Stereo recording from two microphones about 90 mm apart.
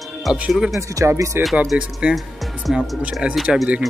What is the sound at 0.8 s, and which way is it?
Speech, 35° right (ahead or behind).